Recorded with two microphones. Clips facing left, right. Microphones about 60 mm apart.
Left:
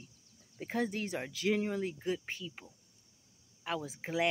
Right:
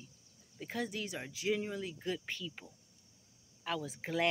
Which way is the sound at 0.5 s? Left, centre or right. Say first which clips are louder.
Left 4 dB; left.